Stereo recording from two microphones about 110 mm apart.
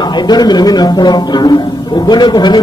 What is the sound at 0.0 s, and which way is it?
A man's voice, 40° left (ahead or behind).